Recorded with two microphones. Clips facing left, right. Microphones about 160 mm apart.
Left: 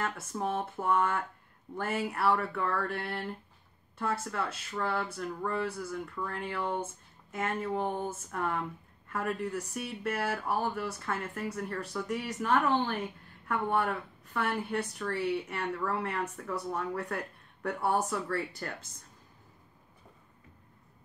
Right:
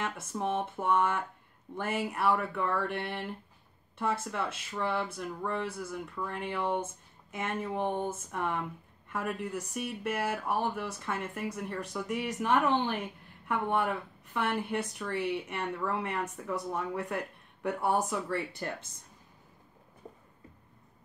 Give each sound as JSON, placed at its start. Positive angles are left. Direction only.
{"t": 0.0, "sound": "speech", "side_deg": -15}
{"t": 13.7, "sound": "speech", "side_deg": -15}